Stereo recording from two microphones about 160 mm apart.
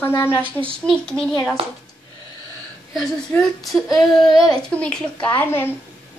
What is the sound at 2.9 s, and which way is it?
A woman's voice, centre (ahead or behind).